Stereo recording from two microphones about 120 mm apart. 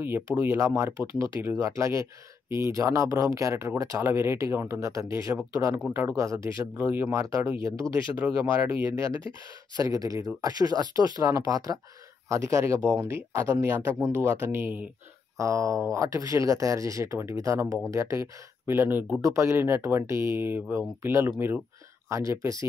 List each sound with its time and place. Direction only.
0.0 s speech: 15° right (ahead or behind)